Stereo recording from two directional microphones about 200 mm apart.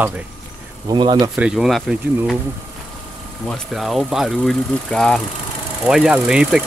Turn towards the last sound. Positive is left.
turn(degrees=-5)  # may be behind; listen again after turning